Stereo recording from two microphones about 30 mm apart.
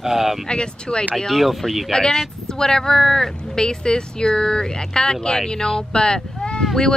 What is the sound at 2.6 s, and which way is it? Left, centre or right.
Speech, left.